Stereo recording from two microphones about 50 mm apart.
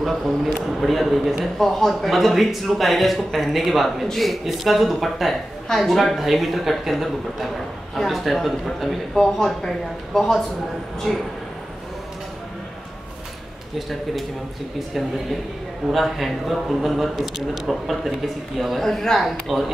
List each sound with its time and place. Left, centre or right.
0.0 s speech: centre
13.7 s speech: centre
15.9 s speech: centre
18.8 s speech: centre